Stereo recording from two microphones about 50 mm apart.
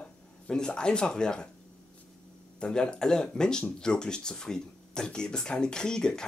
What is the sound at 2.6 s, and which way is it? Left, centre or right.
Speech, centre.